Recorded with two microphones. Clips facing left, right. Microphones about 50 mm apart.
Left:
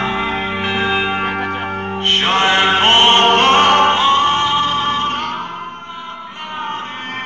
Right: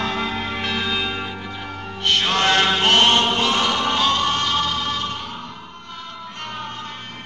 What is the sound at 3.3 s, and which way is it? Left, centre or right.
Opera, left.